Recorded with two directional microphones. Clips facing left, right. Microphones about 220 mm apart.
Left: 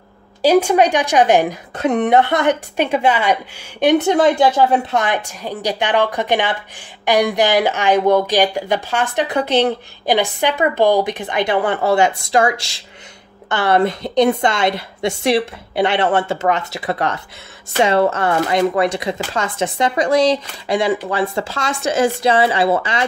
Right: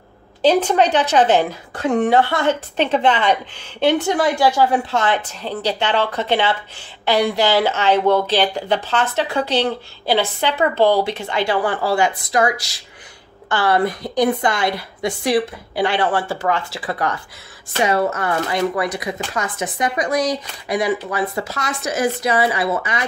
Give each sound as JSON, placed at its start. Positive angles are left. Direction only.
{"t": 0.4, "sound": "speech", "side_deg": 10}
{"t": 3.8, "sound": "speech", "side_deg": 20}